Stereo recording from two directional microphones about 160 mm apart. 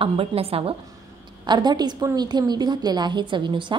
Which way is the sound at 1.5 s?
25° right (ahead or behind).